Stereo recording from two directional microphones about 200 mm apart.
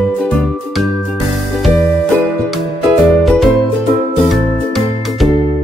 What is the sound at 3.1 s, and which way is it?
Music, centre (ahead or behind).